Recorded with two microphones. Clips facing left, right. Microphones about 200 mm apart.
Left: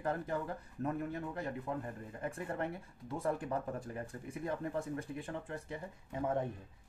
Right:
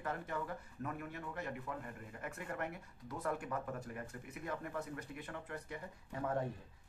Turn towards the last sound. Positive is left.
turn(degrees=20)  # may be behind; listen again after turning